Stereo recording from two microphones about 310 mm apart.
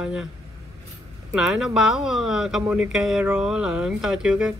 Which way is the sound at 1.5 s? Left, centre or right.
Centre.